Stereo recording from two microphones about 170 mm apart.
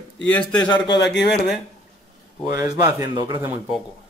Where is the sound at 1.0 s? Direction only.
85° left.